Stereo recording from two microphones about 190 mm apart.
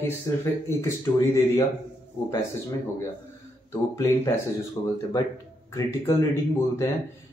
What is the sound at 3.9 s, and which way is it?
Speech, 15° left (ahead or behind).